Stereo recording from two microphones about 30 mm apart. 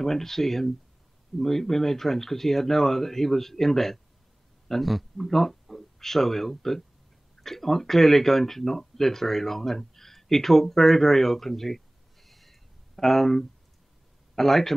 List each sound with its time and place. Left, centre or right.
0.0 s a man's voice: centre